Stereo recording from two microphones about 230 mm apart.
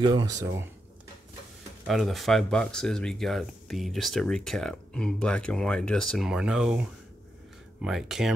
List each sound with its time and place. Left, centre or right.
0.0 s speech: centre
1.9 s speech: centre